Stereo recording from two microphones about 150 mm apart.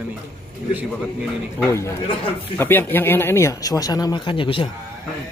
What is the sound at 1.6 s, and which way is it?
Speech, 20° left (ahead or behind).